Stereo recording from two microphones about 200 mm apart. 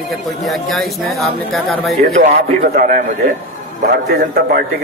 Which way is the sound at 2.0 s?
40° right (ahead or behind).